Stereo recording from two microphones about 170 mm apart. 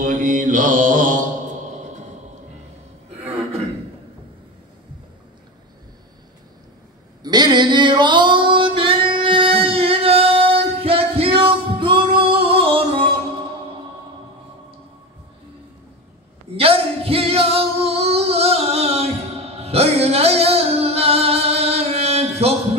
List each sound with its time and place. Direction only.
0.0 s mantra: 50° right (ahead or behind)
7.2 s female singing: 25° right (ahead or behind)
16.5 s singing: 35° right (ahead or behind)